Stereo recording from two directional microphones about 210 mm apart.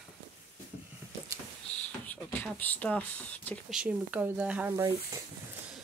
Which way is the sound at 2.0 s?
5° left (ahead or behind).